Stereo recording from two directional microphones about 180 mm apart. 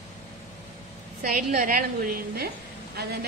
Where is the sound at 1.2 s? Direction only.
50° right (ahead or behind).